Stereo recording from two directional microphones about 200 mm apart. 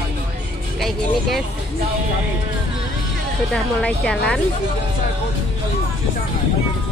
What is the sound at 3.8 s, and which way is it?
Speech, 5° left (ahead or behind).